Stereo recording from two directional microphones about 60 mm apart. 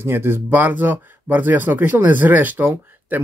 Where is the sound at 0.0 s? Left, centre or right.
Right.